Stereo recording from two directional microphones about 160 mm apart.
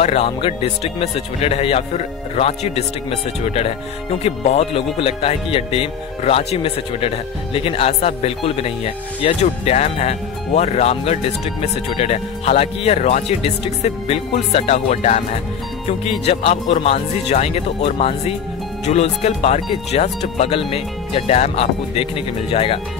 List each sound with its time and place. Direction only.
0.0 s speech: 40° left (ahead or behind)
16.3 s speech: 40° left (ahead or behind)